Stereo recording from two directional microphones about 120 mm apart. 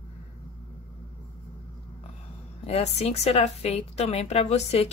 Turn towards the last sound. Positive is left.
turn(degrees=60)  # may be behind; listen again after turning